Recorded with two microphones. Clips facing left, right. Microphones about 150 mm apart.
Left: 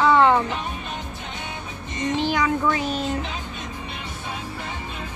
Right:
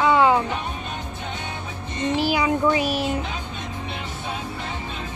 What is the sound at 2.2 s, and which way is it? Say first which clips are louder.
Child singing: right 2 dB; 15° right (ahead or behind).